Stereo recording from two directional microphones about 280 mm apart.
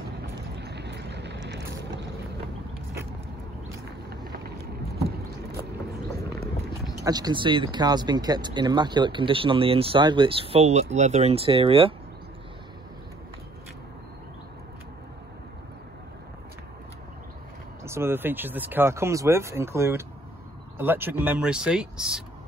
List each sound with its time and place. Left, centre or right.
0.6 s vehicle: right
7.1 s speech: centre
17.8 s speech: centre